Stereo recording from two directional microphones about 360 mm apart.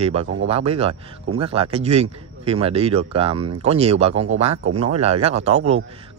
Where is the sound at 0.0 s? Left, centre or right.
Centre.